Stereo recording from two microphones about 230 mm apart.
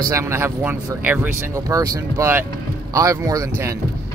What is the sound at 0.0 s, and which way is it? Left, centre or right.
Speech, centre.